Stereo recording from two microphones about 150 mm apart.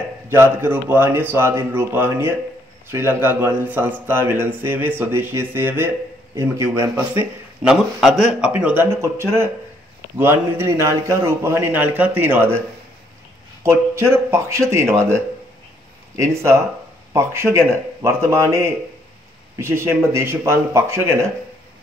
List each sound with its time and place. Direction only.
0.3 s a man's voice: 15° right (ahead or behind)
13.6 s a man's voice: 20° right (ahead or behind)